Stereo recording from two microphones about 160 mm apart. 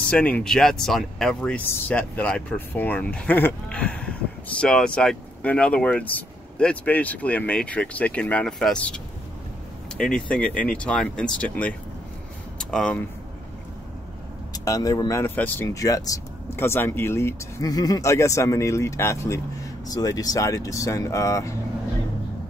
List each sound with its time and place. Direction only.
0.1 s speech: 5° left (ahead or behind)
14.5 s speech: 25° left (ahead or behind)